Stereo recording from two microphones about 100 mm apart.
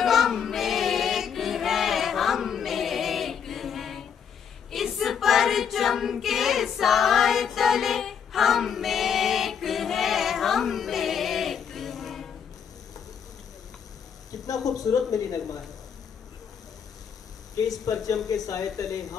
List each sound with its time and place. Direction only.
0.0 s choir: centre (ahead or behind)
4.6 s child singing: centre (ahead or behind)
14.3 s a sound: 40° left (ahead or behind)
15.0 s speech: 35° left (ahead or behind)
17.6 s speech: 35° left (ahead or behind)